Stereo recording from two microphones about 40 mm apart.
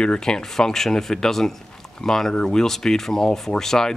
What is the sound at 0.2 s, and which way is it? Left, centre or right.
Speech, centre.